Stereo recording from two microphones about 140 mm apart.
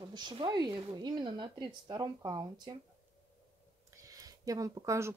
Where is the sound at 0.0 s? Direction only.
30° right (ahead or behind).